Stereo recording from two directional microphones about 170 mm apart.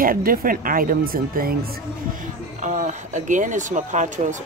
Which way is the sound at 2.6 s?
45° right (ahead or behind).